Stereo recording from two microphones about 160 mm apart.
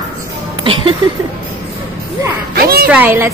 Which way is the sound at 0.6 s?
30° right (ahead or behind).